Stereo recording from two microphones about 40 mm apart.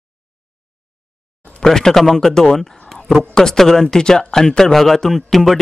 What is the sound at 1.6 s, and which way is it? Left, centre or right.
Speech, centre.